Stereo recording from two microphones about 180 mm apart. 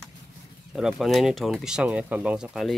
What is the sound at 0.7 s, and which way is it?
Speech, centre (ahead or behind).